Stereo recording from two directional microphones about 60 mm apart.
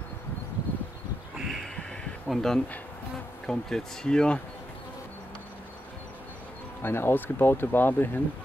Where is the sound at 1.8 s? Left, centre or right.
Centre.